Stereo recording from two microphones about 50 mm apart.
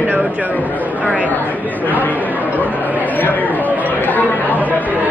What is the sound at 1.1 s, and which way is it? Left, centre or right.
Speech, left.